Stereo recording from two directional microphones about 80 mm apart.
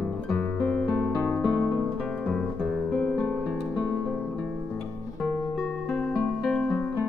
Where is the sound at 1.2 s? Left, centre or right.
Centre.